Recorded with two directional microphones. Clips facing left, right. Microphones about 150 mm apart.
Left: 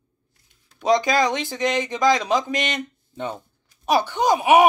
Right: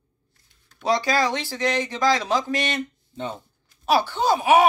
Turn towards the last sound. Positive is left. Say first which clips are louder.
# left 2 dB
turn(degrees=15)  # may be behind; listen again after turning